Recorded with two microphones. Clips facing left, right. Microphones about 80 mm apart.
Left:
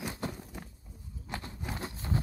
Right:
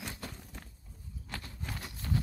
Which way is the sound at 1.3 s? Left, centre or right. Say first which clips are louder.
Left 4 dB; left.